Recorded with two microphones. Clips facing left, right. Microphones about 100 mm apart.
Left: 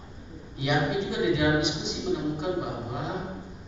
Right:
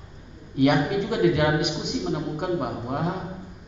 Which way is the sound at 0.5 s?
55° right (ahead or behind).